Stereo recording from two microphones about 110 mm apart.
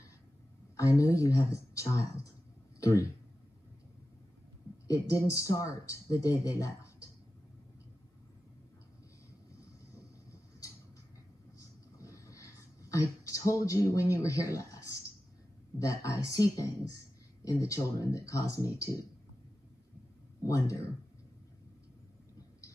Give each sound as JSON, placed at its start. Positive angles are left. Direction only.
{"t": 0.7, "sound": "speech", "side_deg": 30}
{"t": 4.8, "sound": "speech", "side_deg": 25}
{"t": 12.0, "sound": "a sound", "side_deg": 30}
{"t": 13.3, "sound": "a woman's voice", "side_deg": 30}
{"t": 20.4, "sound": "speech", "side_deg": 30}